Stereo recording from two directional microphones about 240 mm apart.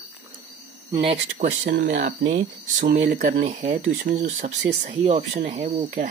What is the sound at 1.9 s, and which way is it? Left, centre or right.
Speech, right.